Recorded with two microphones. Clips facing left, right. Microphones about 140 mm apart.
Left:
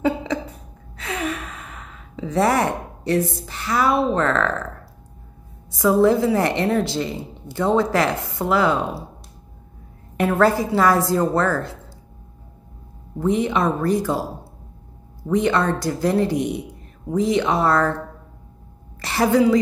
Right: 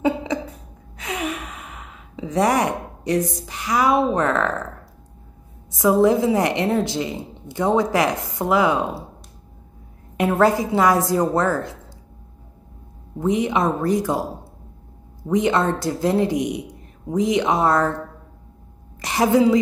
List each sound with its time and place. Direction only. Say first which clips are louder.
0.0 s cough: even; 15° right (ahead or behind)
0.9 s gasp: even; 15° right (ahead or behind)
5.8 s a woman's voice: even; 20° right (ahead or behind)
10.1 s a woman's voice: even; 20° right (ahead or behind)
13.2 s speech: even; 15° right (ahead or behind)
15.2 s a woman's voice: even; 20° right (ahead or behind)
18.9 s a woman's voice: even; 15° right (ahead or behind)